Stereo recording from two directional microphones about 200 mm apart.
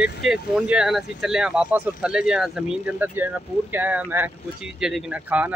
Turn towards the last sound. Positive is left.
turn(degrees=-10)  # may be behind; listen again after turning